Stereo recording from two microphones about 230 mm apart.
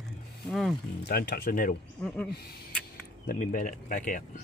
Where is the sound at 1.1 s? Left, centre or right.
Left.